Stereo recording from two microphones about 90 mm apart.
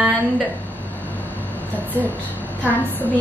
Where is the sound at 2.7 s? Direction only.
20° left (ahead or behind).